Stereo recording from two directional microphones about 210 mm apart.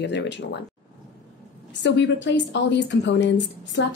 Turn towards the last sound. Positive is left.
turn(degrees=60)  # may be behind; listen again after turning